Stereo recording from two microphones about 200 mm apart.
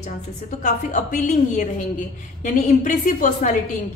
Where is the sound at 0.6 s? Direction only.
35° left (ahead or behind).